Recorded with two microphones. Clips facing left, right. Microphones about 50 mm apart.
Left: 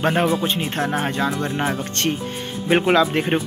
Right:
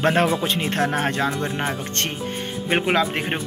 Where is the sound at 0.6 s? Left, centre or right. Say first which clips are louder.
Right 1 dB; right.